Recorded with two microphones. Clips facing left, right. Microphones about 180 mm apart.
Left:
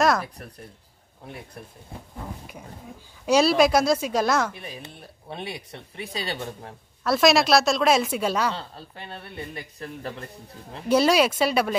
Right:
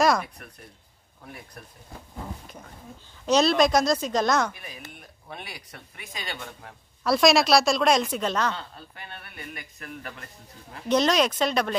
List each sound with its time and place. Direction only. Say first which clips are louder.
0.0 s a sound: even; centre (ahead or behind)
3.3 s speech: left 2 dB; 10° left (ahead or behind)
4.6 s speech: left 4 dB; 30° left (ahead or behind)
7.0 s a woman's voice: left 1 dB; centre (ahead or behind)
8.5 s speech: left 3 dB; 30° left (ahead or behind)
10.9 s speech: left 3 dB; 10° left (ahead or behind)